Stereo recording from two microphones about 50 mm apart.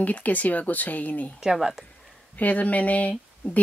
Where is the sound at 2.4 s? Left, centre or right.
Left.